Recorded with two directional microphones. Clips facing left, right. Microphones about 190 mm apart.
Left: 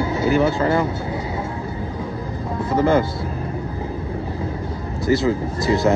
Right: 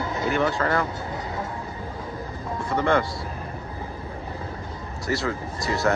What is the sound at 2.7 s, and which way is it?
Speech, 5° left (ahead or behind).